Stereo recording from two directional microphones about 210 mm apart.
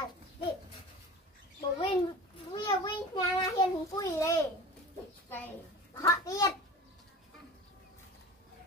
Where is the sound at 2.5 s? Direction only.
25° left (ahead or behind).